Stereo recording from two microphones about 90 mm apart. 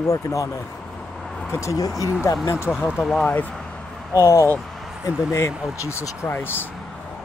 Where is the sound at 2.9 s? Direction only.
5° right (ahead or behind).